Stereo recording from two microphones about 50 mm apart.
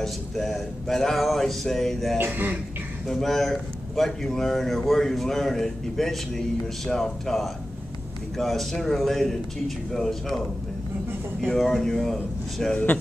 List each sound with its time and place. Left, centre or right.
0.0 s speech: centre
2.1 s speech: right
3.1 s speech: centre
11.4 s speech: centre